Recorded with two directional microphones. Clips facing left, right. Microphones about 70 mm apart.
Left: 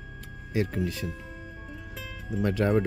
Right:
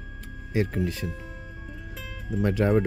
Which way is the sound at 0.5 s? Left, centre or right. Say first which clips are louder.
Right 2 dB; right.